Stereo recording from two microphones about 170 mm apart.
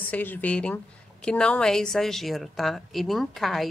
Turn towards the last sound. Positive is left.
turn(degrees=0)  # may be behind; listen again after turning